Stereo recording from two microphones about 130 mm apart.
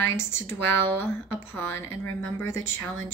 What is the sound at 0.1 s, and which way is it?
Speech, 20° left (ahead or behind).